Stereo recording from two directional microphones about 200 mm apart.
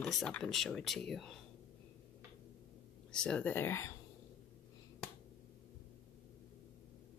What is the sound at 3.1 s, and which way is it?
Speech, 5° left (ahead or behind).